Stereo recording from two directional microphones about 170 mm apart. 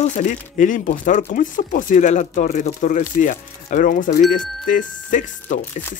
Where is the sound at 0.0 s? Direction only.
45° left (ahead or behind).